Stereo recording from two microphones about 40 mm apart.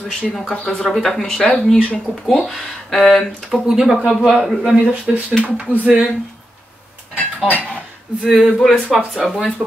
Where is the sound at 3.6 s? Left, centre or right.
Centre.